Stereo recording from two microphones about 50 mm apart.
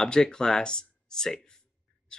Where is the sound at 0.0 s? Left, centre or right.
Centre.